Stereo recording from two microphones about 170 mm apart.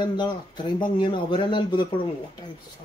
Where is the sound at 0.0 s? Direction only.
25° left (ahead or behind).